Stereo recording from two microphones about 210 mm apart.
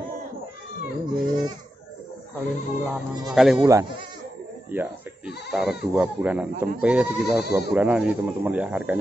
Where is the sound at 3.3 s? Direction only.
Centre (ahead or behind).